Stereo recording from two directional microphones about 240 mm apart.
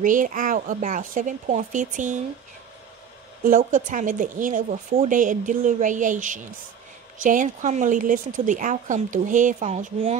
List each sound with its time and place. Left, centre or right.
0.0 s speech: right
3.4 s speech: right